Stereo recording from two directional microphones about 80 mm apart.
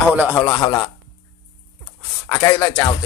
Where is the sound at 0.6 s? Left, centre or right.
Left.